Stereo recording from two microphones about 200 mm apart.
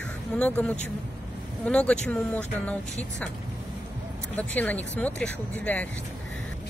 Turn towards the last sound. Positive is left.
turn(degrees=5)  # may be behind; listen again after turning